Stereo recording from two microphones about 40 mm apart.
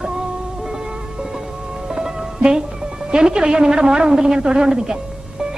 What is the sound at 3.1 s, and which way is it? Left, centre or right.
A woman's voice, centre.